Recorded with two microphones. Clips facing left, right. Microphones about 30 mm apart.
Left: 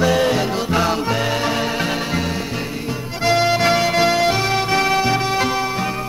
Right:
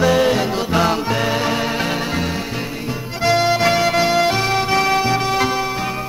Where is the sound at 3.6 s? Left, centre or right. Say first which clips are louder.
Even; centre.